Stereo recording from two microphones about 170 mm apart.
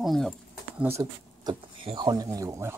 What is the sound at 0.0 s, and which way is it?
Speech, centre (ahead or behind).